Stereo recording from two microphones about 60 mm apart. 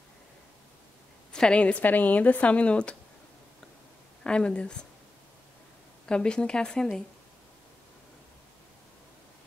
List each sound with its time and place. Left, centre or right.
1.3 s speech: centre
4.2 s a woman's voice: centre
6.0 s a woman's voice: centre